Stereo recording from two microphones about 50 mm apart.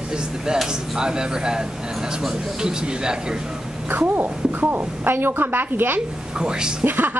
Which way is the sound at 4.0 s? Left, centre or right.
Right.